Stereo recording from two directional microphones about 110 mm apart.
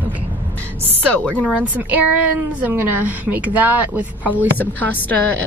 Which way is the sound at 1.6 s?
15° right (ahead or behind).